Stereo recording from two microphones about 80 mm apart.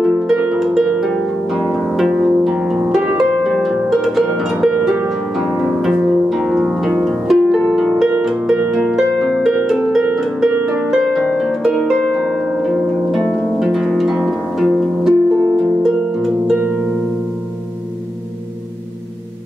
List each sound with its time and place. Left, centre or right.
0.0 s harp: centre
13.2 s harp: left
13.6 s harp: centre
16.5 s harp: centre